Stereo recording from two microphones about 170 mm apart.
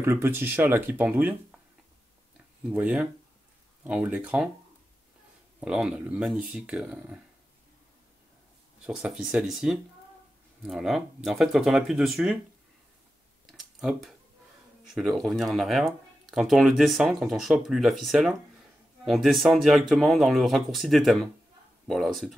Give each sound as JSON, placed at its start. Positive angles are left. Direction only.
{"t": 0.0, "sound": "speech", "side_deg": -15}
{"t": 2.7, "sound": "speech", "side_deg": -5}
{"t": 5.6, "sound": "speech", "side_deg": -5}
{"t": 8.8, "sound": "speech", "side_deg": -5}
{"t": 13.5, "sound": "a sound", "side_deg": 0}
{"t": 15.0, "sound": "speech", "side_deg": 0}